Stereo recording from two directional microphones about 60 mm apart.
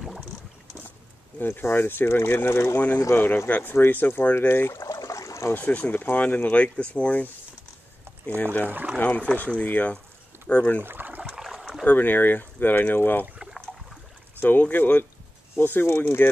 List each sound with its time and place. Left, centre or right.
1.6 s speech: left
3.4 s speech: left
4.8 s water: left
5.5 s speech: left
8.6 s speech: right
8.9 s speech: left
10.8 s a sound: right
11.3 s boat: centre
11.8 s speech: left
14.4 s speech: left